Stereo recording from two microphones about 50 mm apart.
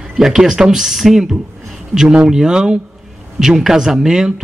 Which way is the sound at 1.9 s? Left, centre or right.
Centre.